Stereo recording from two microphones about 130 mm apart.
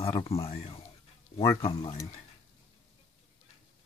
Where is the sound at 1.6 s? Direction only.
45° left (ahead or behind).